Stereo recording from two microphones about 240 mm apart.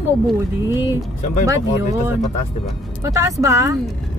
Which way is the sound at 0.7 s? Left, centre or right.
Centre.